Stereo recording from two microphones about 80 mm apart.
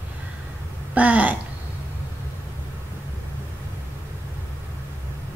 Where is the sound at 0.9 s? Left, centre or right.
Centre.